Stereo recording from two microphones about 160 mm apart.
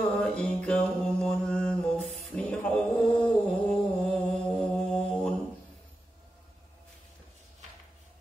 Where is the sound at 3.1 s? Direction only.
5° left (ahead or behind).